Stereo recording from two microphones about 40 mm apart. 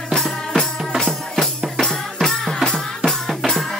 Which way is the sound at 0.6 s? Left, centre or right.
Centre.